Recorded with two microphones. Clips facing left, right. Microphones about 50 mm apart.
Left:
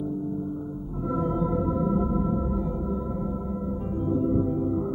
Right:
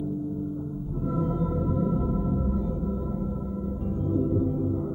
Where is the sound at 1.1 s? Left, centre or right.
Left.